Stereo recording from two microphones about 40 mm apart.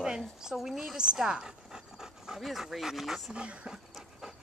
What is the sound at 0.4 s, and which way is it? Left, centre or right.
Speech, centre.